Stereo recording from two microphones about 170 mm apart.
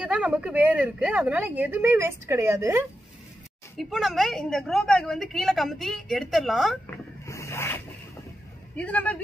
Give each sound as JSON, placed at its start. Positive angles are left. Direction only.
{"t": 0.0, "sound": "a woman's voice", "side_deg": -5}
{"t": 3.7, "sound": "a woman's voice", "side_deg": 0}
{"t": 7.2, "sound": "rub", "side_deg": 15}
{"t": 8.7, "sound": "a man's voice", "side_deg": 10}